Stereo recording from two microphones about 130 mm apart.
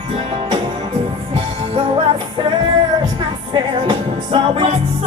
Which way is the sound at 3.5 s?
45° right (ahead or behind).